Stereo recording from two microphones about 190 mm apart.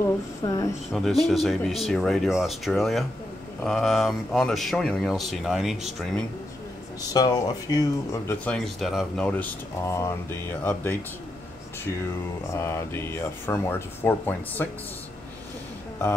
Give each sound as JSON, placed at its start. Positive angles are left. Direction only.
{"t": 0.0, "sound": "speech", "side_deg": 15}
{"t": 0.9, "sound": "speech", "side_deg": 0}
{"t": 7.0, "sound": "speech", "side_deg": 20}
{"t": 12.4, "sound": "speech", "side_deg": 15}